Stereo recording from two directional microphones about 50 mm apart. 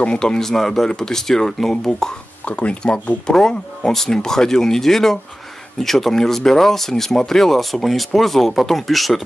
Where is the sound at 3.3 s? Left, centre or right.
Centre.